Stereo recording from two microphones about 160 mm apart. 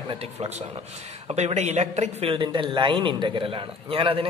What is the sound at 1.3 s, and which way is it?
Speech, 45° right (ahead or behind).